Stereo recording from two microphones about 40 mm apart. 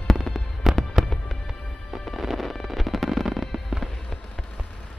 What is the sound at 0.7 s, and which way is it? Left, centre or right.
Fireworks, centre.